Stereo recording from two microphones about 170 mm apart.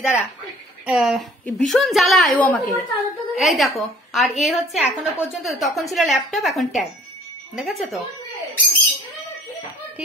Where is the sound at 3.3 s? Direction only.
Centre (ahead or behind).